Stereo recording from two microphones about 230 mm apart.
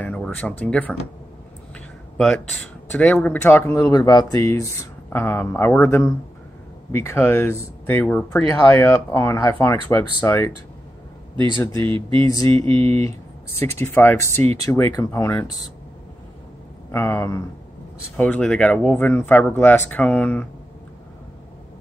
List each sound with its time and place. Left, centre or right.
0.0 s speech: centre
2.1 s speech: centre
11.5 s speech: centre
11.8 s speech: right
13.6 s speech: centre
16.9 s speech: centre